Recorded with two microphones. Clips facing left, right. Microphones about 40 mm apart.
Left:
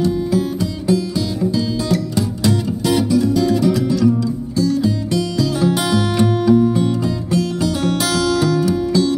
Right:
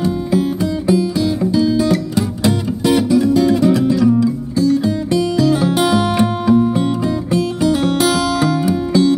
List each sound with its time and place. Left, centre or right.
0.0 s music: right
5.9 s music: centre